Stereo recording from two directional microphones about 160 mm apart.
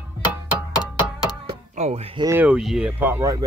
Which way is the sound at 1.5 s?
45° right (ahead or behind).